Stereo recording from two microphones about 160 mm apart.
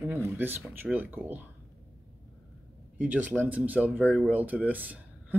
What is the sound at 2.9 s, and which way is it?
Speech, 10° right (ahead or behind).